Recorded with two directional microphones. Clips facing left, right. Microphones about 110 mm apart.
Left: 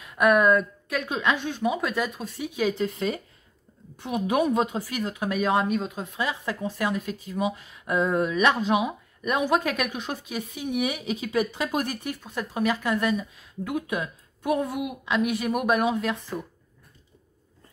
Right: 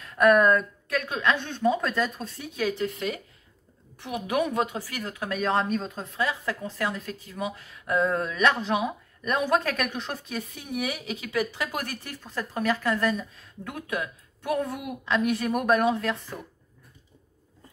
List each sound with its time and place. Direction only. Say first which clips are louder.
0.0 s speech: right 1 dB; 10° left (ahead or behind)